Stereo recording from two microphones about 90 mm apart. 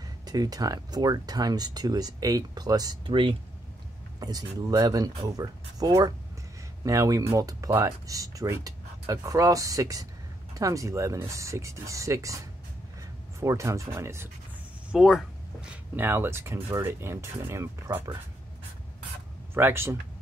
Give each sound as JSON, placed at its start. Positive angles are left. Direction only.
{"t": 0.3, "sound": "speech", "side_deg": -45}
{"t": 3.1, "sound": "speech", "side_deg": -75}
{"t": 4.2, "sound": "speech", "side_deg": -45}
{"t": 14.9, "sound": "speech", "side_deg": -5}
{"t": 15.7, "sound": "speech", "side_deg": -25}
{"t": 19.5, "sound": "speech", "side_deg": -25}